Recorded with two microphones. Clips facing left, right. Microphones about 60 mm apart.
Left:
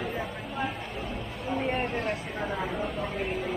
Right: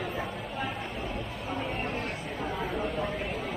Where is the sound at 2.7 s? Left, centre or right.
Centre.